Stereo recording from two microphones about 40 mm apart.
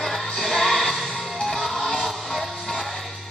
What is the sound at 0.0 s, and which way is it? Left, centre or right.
Music, centre.